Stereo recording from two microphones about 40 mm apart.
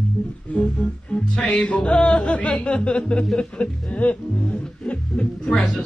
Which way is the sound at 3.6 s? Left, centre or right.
Left.